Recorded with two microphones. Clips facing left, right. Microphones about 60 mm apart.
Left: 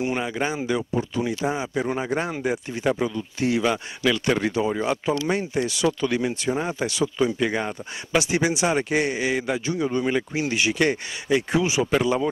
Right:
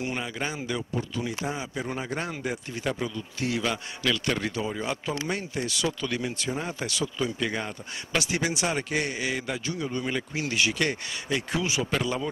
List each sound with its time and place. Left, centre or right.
0.0 s speech: centre